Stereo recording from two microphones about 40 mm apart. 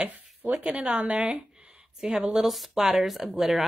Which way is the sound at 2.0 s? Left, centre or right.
Centre.